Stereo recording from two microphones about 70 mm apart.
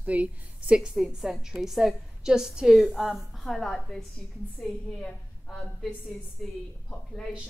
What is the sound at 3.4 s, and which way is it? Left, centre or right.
A woman's voice, centre.